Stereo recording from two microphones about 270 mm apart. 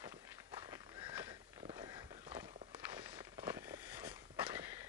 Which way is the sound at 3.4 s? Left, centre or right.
Centre.